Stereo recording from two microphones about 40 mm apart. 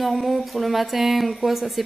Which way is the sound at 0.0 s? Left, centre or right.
Centre.